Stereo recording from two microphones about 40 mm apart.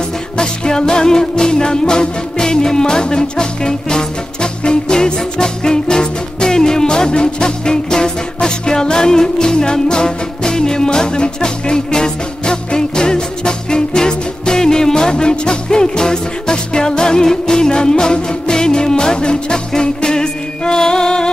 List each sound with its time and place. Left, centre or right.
0.4 s music: centre